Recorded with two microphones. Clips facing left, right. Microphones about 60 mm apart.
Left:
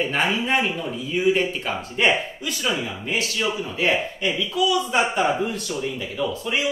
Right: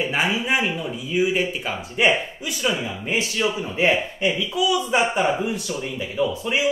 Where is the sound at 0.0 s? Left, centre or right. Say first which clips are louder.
Even; centre; by 4.3 s right.